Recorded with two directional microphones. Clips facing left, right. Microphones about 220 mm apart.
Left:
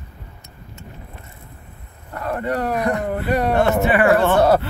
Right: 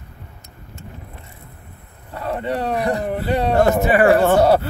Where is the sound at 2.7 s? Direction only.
30° right (ahead or behind).